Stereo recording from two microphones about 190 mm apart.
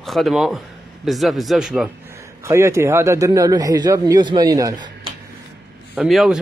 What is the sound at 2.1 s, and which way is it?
A man's voice, 15° right (ahead or behind).